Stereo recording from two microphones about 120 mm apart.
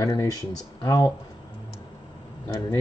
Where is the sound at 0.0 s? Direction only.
30° left (ahead or behind).